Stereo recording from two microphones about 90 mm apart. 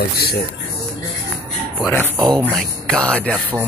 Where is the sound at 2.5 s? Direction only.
10° left (ahead or behind).